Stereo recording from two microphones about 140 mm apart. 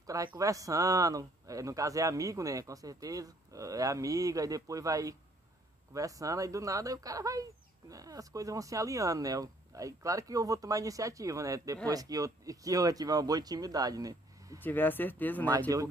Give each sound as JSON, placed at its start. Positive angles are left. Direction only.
{"t": 0.0, "sound": "a sound", "side_deg": -25}
{"t": 0.4, "sound": "speech", "side_deg": -25}
{"t": 14.6, "sound": "speech", "side_deg": 15}